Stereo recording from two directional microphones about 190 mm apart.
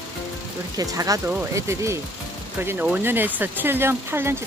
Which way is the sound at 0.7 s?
20° right (ahead or behind).